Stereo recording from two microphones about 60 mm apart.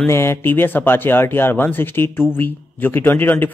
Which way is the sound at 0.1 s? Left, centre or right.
Left.